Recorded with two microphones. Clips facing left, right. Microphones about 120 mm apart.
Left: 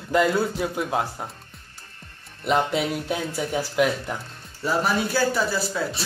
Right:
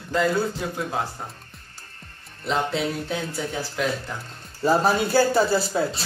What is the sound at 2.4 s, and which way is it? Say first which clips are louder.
Speech: left 2 dB; 10° left (ahead or behind).